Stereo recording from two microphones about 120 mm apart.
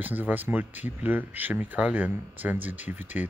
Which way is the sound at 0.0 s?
15° right (ahead or behind).